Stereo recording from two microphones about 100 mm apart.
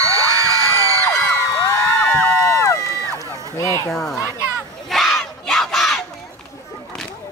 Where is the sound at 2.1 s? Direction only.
25° left (ahead or behind).